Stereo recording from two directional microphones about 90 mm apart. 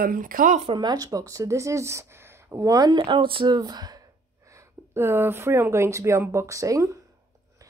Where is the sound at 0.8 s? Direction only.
45° right (ahead or behind).